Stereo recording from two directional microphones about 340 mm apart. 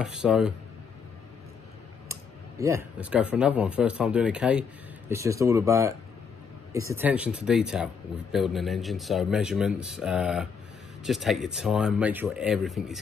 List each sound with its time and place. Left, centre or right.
0.0 s speech: centre
2.6 s speech: centre